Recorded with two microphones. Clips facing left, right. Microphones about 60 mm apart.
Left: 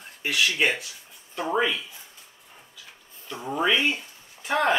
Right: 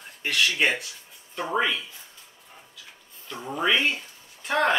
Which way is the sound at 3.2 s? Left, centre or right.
Centre.